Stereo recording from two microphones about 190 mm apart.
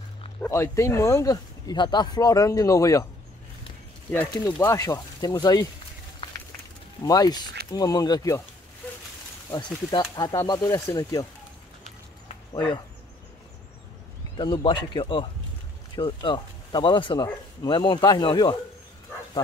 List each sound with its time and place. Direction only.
0.4 s speech: 15° left (ahead or behind)
4.6 s speech: 15° left (ahead or behind)
7.1 s speech: 20° left (ahead or behind)
9.5 s speech: 20° left (ahead or behind)
14.3 s speech: 25° left (ahead or behind)